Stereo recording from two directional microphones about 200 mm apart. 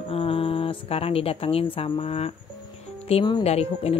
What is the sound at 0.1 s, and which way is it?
Speech, 30° left (ahead or behind).